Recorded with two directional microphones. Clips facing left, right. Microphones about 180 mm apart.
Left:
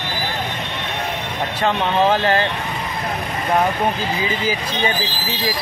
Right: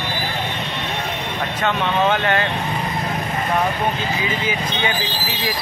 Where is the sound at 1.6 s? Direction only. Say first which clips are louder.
Left 2 dB; 35° left (ahead or behind).